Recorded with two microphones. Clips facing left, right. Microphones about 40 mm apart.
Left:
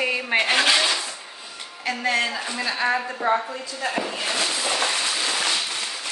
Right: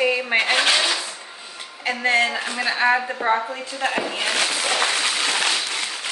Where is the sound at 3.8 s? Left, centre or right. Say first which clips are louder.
Right 3 dB; right.